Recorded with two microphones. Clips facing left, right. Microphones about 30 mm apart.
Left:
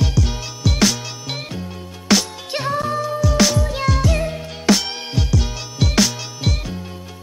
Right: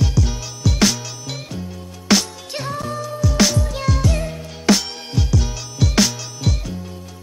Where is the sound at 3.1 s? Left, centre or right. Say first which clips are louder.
Even; centre.